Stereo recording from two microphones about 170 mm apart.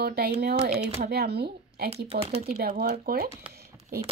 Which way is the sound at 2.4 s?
60° right (ahead or behind).